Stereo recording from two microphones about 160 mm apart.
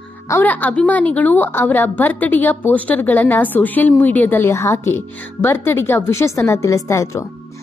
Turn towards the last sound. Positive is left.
turn(degrees=20)  # may be behind; listen again after turning